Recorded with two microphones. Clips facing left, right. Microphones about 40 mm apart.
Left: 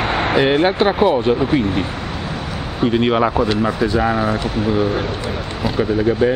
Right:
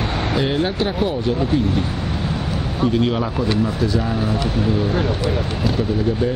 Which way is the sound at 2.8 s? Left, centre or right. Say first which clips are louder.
Left 4 dB; left.